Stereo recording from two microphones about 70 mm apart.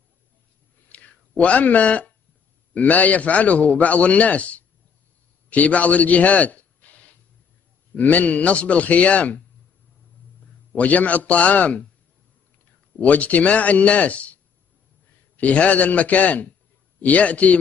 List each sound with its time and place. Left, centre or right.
0.8 s a sound: centre
2.7 s a man's voice: left
10.8 s a man's voice: left
13.0 s a man's voice: left